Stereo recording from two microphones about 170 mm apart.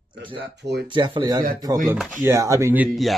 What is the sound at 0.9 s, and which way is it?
Speech, 30° right (ahead or behind).